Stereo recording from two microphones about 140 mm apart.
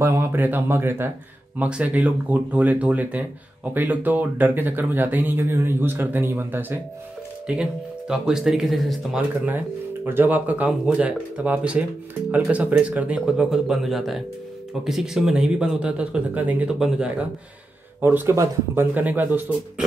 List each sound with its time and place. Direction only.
0.0 s speech: 20° right (ahead or behind); by 9.2 s centre (ahead or behind)
10.0 s speech: 15° right (ahead or behind)
18.0 s speech: 15° right (ahead or behind)